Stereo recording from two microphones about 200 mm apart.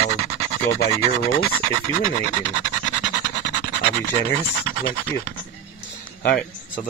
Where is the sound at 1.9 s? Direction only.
25° right (ahead or behind).